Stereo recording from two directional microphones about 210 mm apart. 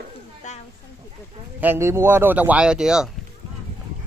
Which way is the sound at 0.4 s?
35° left (ahead or behind).